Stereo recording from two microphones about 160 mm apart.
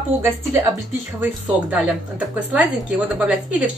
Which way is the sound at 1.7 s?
10° right (ahead or behind).